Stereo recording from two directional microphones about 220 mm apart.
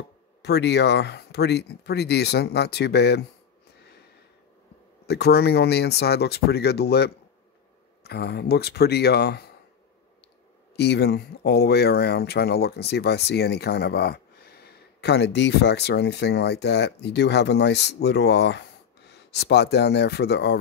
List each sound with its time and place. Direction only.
0.4 s speech: 50° left (ahead or behind)
5.0 s speech: 50° left (ahead or behind)
10.8 s speech: 50° left (ahead or behind)